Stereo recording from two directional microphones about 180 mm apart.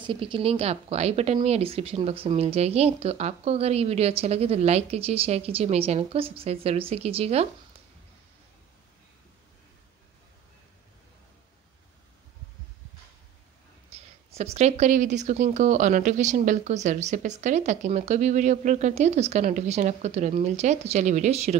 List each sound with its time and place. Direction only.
0.0 s a woman's voice: 30° right (ahead or behind)
13.8 s a woman's voice: 35° right (ahead or behind)